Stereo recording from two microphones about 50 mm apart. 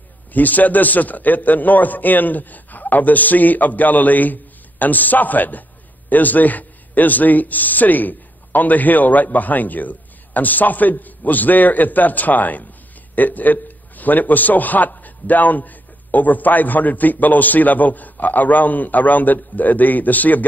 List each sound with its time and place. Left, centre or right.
0.3 s a man's voice: left